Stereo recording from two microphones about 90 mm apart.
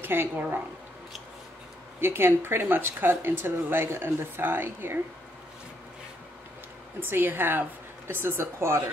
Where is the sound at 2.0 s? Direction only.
25° right (ahead or behind).